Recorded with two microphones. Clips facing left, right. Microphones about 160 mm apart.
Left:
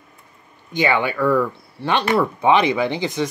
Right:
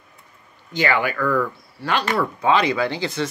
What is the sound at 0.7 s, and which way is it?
Speech, 20° left (ahead or behind).